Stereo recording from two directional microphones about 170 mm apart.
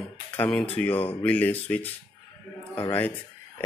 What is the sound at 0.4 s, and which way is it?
Speech, 10° left (ahead or behind).